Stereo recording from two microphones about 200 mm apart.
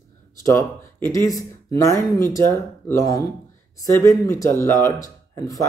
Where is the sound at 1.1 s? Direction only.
15° left (ahead or behind).